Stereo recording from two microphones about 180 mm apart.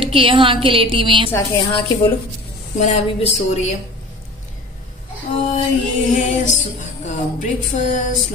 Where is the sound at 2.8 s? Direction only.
40° left (ahead or behind).